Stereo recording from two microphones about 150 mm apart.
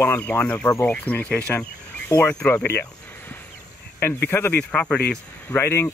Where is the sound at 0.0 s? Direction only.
10° left (ahead or behind).